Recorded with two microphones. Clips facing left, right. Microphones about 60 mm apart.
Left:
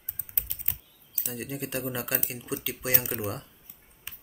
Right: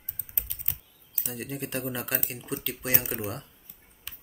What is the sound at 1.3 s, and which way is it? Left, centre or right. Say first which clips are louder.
Speech: even; centre.